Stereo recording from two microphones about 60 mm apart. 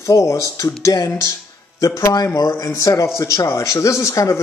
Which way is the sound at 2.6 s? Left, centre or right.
Left.